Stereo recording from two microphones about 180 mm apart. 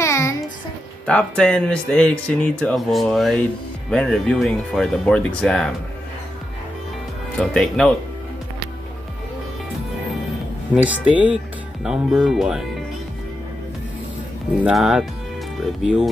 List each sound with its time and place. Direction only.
0.0 s a sound: 15° left (ahead or behind)
1.0 s speech: 5° left (ahead or behind)
7.3 s speech: 5° left (ahead or behind)
10.7 s speech: 10° right (ahead or behind)
14.6 s speech: 5° right (ahead or behind)